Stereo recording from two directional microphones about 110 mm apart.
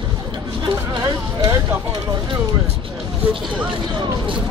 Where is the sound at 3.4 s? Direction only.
5° right (ahead or behind).